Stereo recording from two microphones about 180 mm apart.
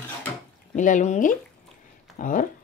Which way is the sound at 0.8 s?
45° left (ahead or behind).